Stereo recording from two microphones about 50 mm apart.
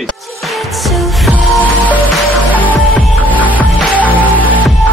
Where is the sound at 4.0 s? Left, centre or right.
Left.